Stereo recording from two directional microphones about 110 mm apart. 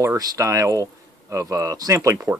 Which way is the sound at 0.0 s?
25° right (ahead or behind).